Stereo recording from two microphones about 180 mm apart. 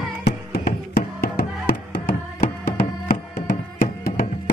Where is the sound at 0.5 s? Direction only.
60° left (ahead or behind).